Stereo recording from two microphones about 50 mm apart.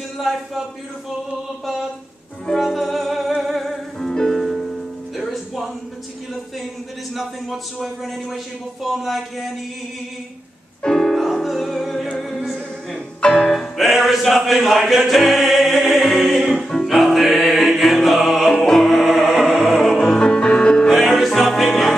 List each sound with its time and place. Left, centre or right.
0.3 s a man's voice: centre
2.5 s music: centre
7.2 s a man's voice: centre
10.8 s music: centre
11.1 s music: centre
13.2 s music: centre
13.5 s music: centre
20.2 s music: centre
20.9 s music: centre